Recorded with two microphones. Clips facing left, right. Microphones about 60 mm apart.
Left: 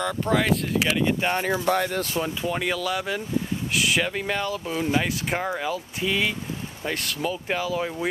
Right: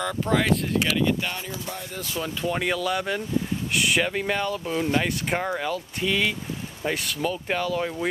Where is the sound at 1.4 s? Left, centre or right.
Left.